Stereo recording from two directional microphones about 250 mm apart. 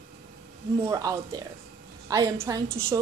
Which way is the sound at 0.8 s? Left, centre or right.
Centre.